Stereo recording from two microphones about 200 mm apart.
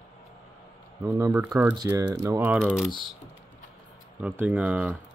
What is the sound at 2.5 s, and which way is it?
Speech, centre (ahead or behind).